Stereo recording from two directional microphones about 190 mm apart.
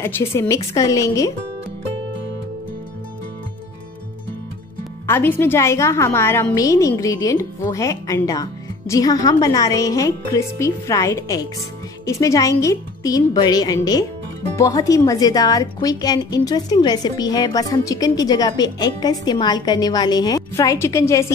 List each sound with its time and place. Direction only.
0.0 s a woman's voice: 15° left (ahead or behind)
5.0 s a woman's voice: 10° left (ahead or behind)